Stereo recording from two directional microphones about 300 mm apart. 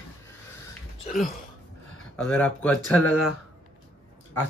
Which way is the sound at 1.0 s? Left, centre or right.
Left.